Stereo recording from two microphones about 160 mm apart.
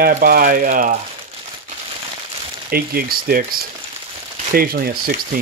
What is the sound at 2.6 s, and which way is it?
Speech, 70° right (ahead or behind).